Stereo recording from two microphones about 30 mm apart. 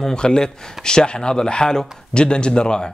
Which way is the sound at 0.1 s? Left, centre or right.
Left.